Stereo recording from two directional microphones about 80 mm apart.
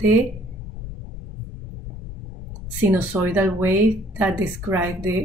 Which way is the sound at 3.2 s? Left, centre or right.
Right.